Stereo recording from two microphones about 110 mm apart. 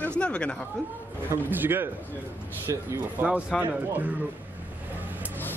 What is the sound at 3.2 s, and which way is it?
Speech, 10° right (ahead or behind).